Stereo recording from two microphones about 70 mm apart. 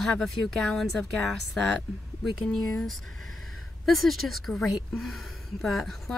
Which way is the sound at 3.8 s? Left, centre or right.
Centre.